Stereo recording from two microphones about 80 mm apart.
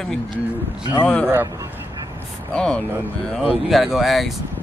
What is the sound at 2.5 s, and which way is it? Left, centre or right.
Speech, centre.